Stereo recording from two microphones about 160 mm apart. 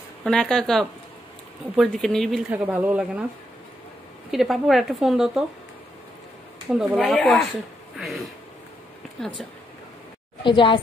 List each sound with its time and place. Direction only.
0.2 s speech: 5° left (ahead or behind)
2.5 s speech: 10° right (ahead or behind)
4.3 s speech: centre (ahead or behind)
6.7 s speech: 5° right (ahead or behind)
10.4 s a woman's voice: 30° left (ahead or behind)